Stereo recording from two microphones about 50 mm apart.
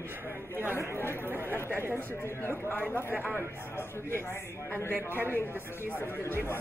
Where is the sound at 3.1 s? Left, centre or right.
Right.